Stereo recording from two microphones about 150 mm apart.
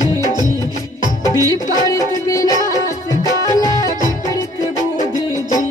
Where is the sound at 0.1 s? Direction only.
25° right (ahead or behind).